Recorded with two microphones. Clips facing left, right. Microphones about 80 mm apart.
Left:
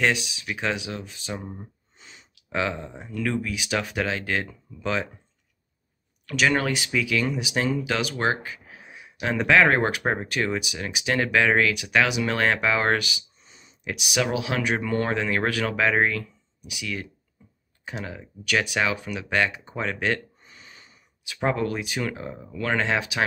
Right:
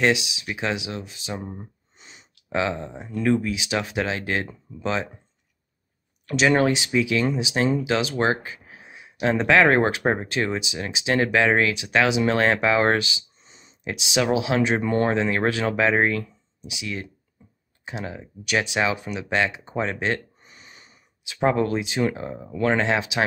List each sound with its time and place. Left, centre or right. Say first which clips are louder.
0.0 s speech: right 3 dB; centre
2.0 s a sound: even; right
3.1 s speech: right 5 dB; right
6.2 s speech: right 4 dB; right